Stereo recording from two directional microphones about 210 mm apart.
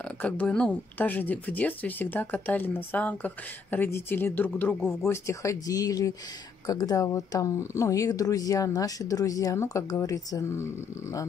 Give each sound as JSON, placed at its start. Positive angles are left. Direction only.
{"t": 0.2, "sound": "speech", "side_deg": 5}